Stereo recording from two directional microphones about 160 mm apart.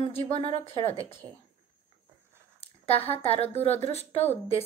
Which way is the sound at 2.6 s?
40° left (ahead or behind).